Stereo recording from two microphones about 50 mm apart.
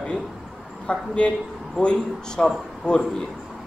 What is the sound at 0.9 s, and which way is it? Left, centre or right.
A man's voice, left.